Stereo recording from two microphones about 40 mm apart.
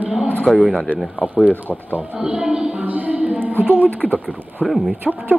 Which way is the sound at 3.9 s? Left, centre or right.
Left.